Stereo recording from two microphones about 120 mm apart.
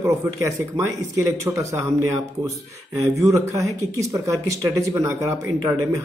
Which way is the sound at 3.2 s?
25° right (ahead or behind).